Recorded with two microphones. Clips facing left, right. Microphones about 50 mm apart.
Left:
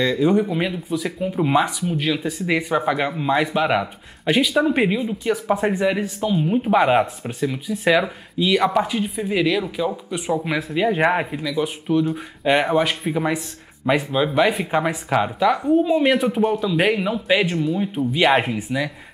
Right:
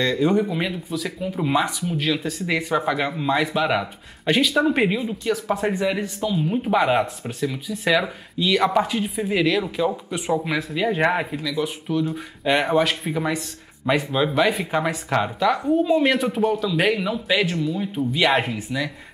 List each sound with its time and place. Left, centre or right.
0.0 s speech: centre
5.2 s speech: centre
10.5 s speech: centre